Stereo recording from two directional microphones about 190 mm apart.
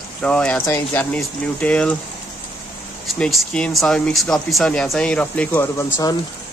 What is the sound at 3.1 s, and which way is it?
Speech, 5° left (ahead or behind).